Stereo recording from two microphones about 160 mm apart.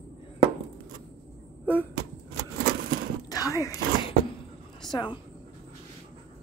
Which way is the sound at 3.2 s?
20° left (ahead or behind).